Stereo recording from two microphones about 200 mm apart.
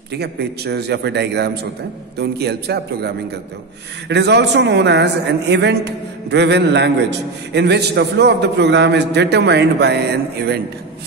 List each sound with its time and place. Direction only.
0.1 s a man's voice: 55° right (ahead or behind)